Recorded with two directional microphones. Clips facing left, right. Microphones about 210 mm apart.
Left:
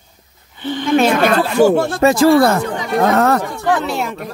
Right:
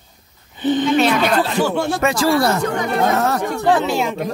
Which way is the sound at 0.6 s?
20° right (ahead or behind).